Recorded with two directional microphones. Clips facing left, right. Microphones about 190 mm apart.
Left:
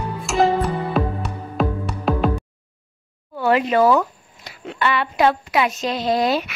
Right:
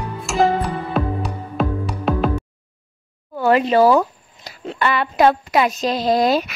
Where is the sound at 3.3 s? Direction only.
40° right (ahead or behind).